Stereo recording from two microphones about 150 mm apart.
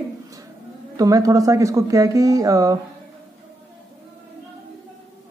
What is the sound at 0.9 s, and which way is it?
Speech, 25° right (ahead or behind).